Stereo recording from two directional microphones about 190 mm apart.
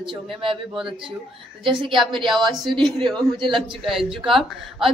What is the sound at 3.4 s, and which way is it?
Speech, 25° right (ahead or behind).